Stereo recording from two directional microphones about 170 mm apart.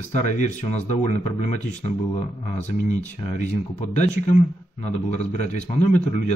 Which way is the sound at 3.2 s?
40° left (ahead or behind).